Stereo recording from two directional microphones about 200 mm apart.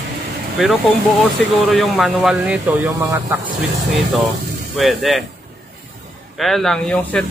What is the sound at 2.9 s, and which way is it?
Speech, 15° right (ahead or behind).